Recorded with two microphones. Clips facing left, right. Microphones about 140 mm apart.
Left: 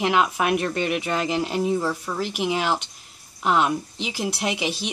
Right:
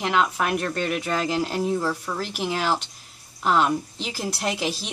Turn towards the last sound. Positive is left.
turn(degrees=0)  # may be behind; listen again after turning